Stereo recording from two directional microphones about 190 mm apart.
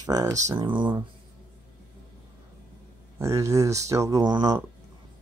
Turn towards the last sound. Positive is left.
turn(degrees=-20)  # may be behind; listen again after turning